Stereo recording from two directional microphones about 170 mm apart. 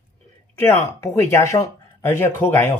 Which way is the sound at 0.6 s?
15° left (ahead or behind).